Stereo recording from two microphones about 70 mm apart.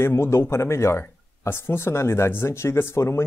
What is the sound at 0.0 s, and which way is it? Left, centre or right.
Speech, left.